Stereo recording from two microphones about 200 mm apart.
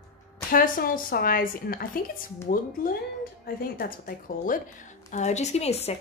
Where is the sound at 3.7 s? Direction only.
45° left (ahead or behind).